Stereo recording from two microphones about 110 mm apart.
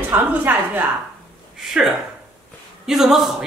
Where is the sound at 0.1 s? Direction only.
15° right (ahead or behind).